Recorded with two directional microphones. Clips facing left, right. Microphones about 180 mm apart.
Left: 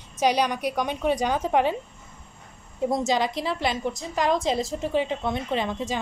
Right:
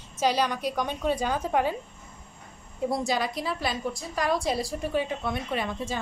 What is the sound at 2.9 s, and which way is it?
A woman's voice, 20° left (ahead or behind).